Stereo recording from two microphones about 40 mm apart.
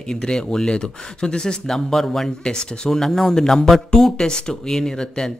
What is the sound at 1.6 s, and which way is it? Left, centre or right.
Speech, centre.